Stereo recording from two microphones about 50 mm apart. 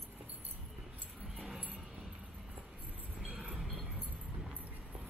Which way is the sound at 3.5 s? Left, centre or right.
Centre.